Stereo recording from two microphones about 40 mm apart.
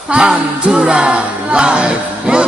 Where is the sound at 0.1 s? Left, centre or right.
Right.